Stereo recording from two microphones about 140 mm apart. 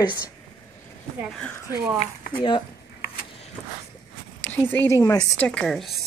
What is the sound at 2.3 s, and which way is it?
Speech, 35° left (ahead or behind).